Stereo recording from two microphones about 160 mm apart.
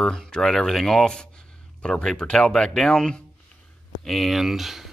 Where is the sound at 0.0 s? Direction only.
5° left (ahead or behind).